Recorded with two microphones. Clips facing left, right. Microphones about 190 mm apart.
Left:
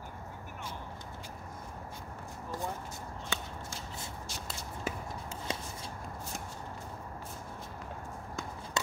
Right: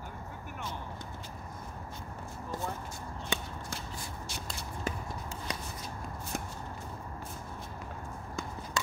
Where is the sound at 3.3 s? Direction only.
15° right (ahead or behind).